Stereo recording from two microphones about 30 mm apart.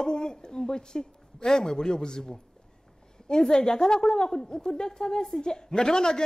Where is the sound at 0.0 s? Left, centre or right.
Left.